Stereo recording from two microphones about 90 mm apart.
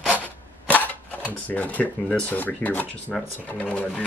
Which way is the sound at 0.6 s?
20° left (ahead or behind).